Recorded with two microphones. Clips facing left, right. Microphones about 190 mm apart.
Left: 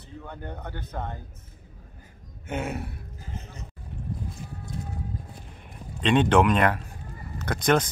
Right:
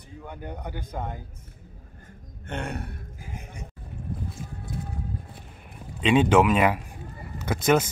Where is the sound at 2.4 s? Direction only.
5° left (ahead or behind).